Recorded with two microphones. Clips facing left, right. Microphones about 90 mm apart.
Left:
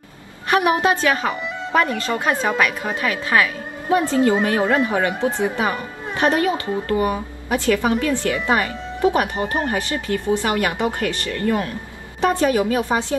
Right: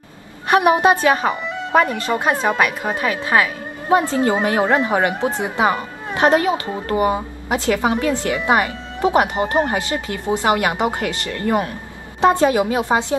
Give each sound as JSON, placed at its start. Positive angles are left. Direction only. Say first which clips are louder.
{"t": 0.5, "sound": "speech", "louder": "right 3 dB", "side_deg": -20}